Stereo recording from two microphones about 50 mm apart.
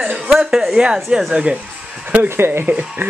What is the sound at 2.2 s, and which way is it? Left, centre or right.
Speech, right.